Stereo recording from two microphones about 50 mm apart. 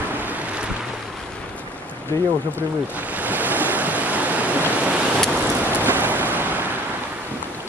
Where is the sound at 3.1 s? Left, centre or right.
Right.